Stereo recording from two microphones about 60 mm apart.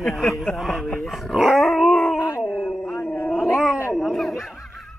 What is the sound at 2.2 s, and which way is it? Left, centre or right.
Howl, left.